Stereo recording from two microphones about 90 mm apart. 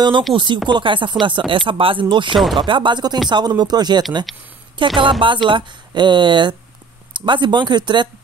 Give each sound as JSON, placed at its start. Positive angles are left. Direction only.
{"t": 0.3, "sound": "speech", "side_deg": -65}
{"t": 4.7, "sound": "speech", "side_deg": -65}